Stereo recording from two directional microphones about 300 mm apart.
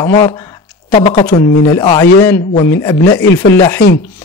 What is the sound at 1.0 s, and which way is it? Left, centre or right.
A man's voice, left.